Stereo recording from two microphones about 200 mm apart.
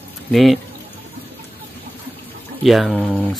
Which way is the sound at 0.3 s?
Centre (ahead or behind).